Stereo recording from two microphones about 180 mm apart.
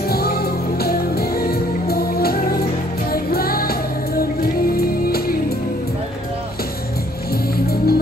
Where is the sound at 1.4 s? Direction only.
60° left (ahead or behind).